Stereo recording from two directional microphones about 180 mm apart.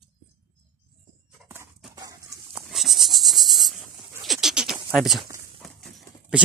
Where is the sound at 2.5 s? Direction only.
Centre (ahead or behind).